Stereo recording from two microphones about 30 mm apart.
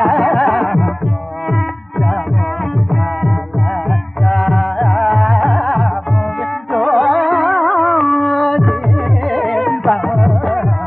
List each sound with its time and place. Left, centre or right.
0.0 s music: centre
4.3 s music: centre